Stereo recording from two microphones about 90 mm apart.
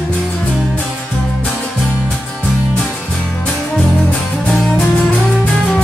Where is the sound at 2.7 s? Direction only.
15° left (ahead or behind).